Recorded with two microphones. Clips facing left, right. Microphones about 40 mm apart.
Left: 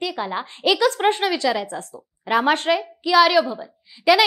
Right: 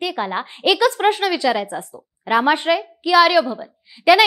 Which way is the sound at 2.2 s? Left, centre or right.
Centre.